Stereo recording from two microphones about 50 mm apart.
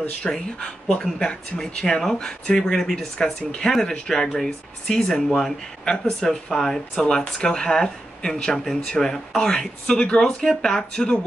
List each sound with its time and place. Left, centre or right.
0.2 s speech: centre